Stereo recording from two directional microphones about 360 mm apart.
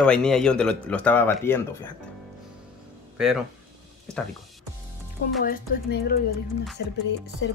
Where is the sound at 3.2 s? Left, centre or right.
Centre.